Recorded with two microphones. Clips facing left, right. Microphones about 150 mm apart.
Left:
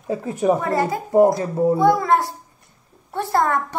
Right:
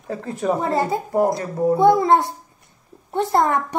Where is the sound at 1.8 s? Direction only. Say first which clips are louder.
Right 5 dB; 25° right (ahead or behind).